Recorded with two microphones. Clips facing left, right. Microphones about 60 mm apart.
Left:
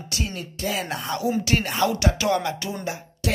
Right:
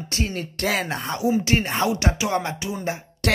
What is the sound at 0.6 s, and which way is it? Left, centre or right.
Speech, right.